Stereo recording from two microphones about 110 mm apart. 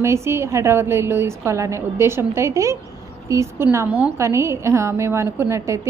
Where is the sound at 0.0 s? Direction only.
25° right (ahead or behind).